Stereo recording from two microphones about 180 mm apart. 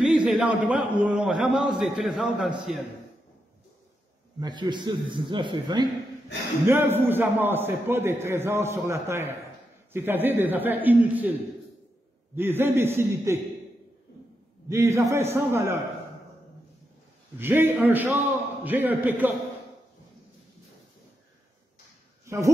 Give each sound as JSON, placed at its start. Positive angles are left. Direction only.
{"t": 0.0, "sound": "a man's voice", "side_deg": -5}
{"t": 4.4, "sound": "a man's voice", "side_deg": -25}
{"t": 6.6, "sound": "a man's voice", "side_deg": -15}
{"t": 12.4, "sound": "a man's voice", "side_deg": -10}
{"t": 14.7, "sound": "a man's voice", "side_deg": -15}
{"t": 17.4, "sound": "a man's voice", "side_deg": -10}
{"t": 22.2, "sound": "a sound", "side_deg": -15}